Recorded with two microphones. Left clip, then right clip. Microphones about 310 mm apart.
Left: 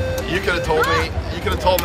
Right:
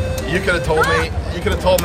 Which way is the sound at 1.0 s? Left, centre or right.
Centre.